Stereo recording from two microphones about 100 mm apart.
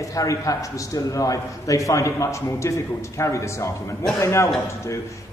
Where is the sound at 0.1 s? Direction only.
35° left (ahead or behind).